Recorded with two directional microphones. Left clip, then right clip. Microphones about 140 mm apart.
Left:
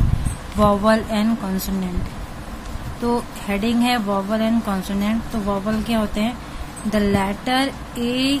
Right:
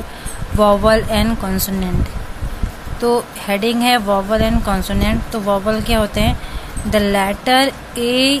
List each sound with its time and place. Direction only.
0.6 s speech: 10° right (ahead or behind)
3.0 s speech: 15° right (ahead or behind)